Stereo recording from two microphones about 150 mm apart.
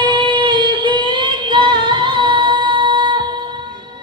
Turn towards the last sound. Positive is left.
turn(degrees=-30)  # may be behind; listen again after turning